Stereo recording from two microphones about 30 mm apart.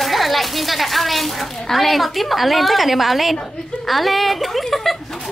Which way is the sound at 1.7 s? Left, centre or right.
Centre.